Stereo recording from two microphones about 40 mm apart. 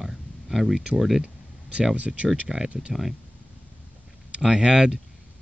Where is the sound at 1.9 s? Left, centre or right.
Right.